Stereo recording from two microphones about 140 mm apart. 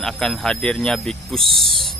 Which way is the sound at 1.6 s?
40° right (ahead or behind).